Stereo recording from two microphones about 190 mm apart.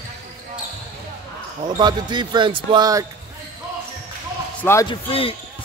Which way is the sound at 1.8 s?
25° right (ahead or behind).